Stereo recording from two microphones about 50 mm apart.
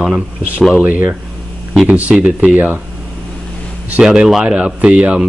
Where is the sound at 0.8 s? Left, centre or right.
Right.